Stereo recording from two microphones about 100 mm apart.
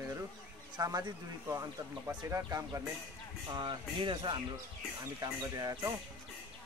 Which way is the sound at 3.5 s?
50° right (ahead or behind).